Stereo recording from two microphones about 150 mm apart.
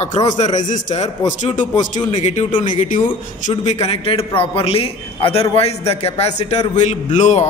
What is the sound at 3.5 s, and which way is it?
A man's voice, 40° left (ahead or behind).